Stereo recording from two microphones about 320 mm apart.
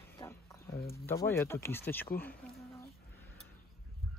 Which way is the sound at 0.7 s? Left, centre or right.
Left.